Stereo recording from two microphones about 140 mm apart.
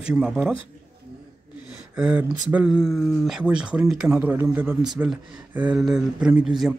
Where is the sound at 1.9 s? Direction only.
10° right (ahead or behind).